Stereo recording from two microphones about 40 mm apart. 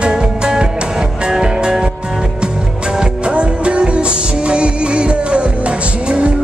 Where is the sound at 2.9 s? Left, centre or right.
Right.